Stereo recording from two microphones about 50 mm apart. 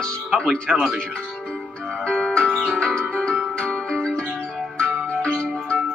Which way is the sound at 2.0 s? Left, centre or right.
Centre.